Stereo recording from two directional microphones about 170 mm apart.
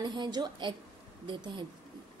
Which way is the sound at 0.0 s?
25° right (ahead or behind).